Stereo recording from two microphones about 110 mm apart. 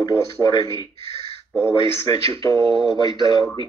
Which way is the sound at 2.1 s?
30° left (ahead or behind).